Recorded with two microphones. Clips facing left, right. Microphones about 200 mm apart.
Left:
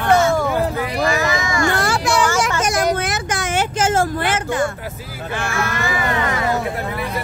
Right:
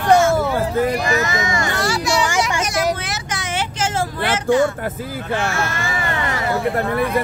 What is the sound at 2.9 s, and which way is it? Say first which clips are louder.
Vehicle: left 4 dB; 50° left (ahead or behind).